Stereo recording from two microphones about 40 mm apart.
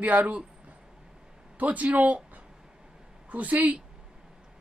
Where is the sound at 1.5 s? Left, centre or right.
Right.